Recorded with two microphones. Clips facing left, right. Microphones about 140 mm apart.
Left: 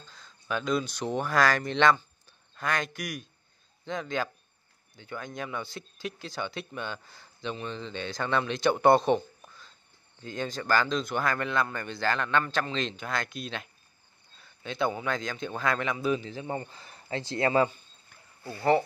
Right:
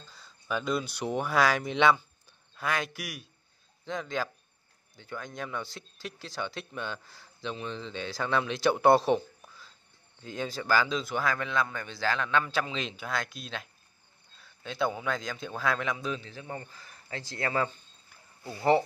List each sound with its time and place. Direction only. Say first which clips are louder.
0.1 s speech: even; 5° right (ahead or behind); by 17.6 s 25° left (ahead or behind)
18.4 s speech: even; 15° right (ahead or behind)